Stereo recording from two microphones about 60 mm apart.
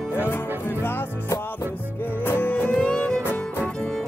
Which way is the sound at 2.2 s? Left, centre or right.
Left.